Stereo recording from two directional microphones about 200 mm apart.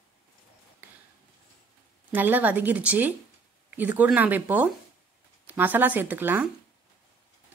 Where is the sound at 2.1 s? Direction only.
10° right (ahead or behind).